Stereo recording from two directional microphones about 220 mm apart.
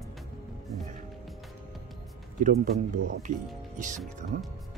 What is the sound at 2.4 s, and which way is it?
Speech, 35° right (ahead or behind).